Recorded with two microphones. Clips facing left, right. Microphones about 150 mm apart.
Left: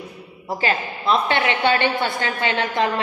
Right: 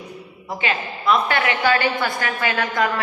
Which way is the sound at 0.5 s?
35° left (ahead or behind).